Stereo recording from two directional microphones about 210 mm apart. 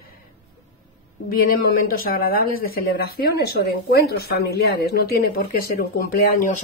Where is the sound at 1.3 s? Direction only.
45° left (ahead or behind).